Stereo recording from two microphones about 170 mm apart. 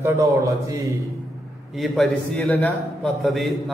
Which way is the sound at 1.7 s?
Centre (ahead or behind).